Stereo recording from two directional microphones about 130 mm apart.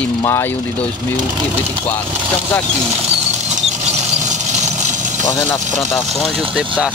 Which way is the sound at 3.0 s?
60° right (ahead or behind).